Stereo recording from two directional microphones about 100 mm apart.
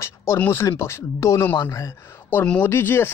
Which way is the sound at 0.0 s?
25° left (ahead or behind).